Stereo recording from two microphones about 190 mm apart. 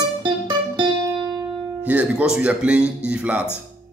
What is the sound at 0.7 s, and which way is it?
Music, 20° right (ahead or behind).